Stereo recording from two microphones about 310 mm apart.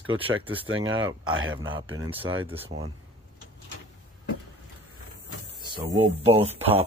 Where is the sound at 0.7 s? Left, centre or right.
Right.